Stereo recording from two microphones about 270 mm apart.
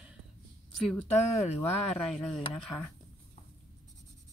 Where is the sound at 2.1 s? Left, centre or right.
Centre.